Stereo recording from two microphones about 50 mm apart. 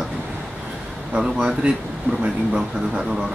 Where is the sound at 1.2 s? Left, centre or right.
Centre.